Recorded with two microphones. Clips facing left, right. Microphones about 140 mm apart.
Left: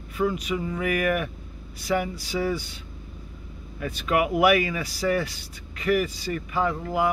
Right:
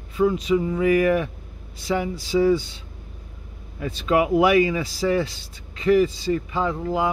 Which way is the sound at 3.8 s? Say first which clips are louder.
Right 3 dB; 25° right (ahead or behind).